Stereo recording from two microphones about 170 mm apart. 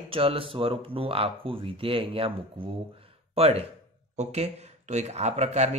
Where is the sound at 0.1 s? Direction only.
35° right (ahead or behind).